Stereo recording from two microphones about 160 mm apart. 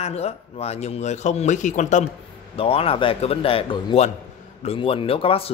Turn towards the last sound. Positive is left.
turn(degrees=35)  # may be behind; listen again after turning